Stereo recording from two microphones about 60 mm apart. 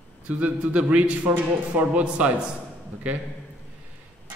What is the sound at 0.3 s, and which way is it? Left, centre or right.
A man's voice, right.